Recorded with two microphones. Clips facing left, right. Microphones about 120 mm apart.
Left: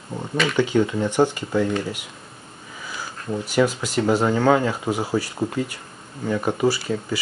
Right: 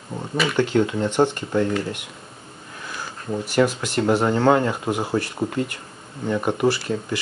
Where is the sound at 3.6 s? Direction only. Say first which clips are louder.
Even; centre (ahead or behind).